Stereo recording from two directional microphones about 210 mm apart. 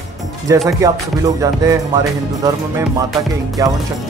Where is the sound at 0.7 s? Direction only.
15° right (ahead or behind).